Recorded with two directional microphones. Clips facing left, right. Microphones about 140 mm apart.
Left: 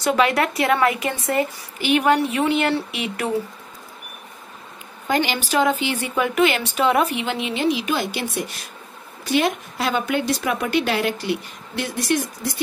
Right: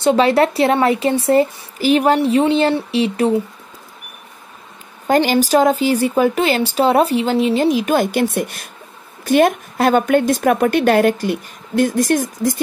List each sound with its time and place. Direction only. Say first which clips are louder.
0.0 s a woman's voice: right 6 dB; 30° right (ahead or behind)
5.0 s a woman's voice: right 8 dB; 45° right (ahead or behind)